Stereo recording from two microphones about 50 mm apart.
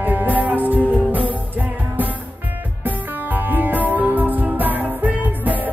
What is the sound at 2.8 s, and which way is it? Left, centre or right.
Music, right.